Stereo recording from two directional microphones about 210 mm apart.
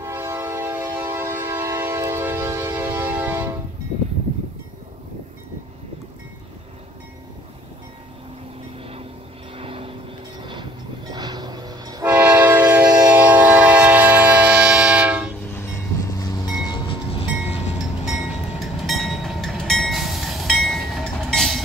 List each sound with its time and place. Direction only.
0.0 s train: 10° right (ahead or behind)
9.6 s vehicle: 25° right (ahead or behind)
10.4 s train: 20° right (ahead or behind); by 15.3 s 5° right (ahead or behind)
15.5 s train: 10° left (ahead or behind)
18.0 s train: centre (ahead or behind)